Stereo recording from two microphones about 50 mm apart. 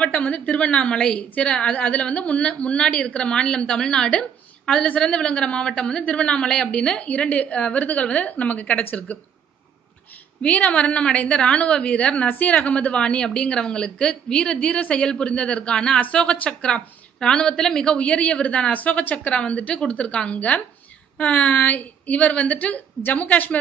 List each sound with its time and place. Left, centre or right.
0.0 s a woman's voice: left
10.4 s a woman's voice: left